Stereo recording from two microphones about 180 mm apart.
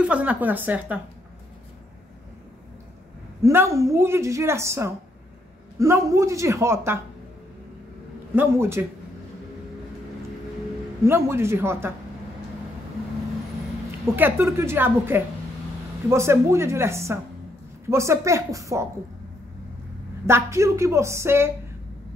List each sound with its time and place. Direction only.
0.0 s a woman's voice: 5° right (ahead or behind)
3.4 s a woman's voice: 15° right (ahead or behind)
8.4 s a woman's voice: 15° right (ahead or behind)
11.1 s a woman's voice: 15° right (ahead or behind)
14.1 s a woman's voice: 10° right (ahead or behind)
20.2 s a woman's voice: 15° right (ahead or behind)